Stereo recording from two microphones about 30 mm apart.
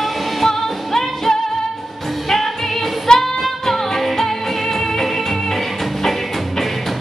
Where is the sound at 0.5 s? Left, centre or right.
Centre.